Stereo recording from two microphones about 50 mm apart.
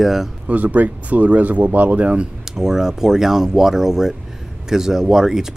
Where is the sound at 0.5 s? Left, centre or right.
Right.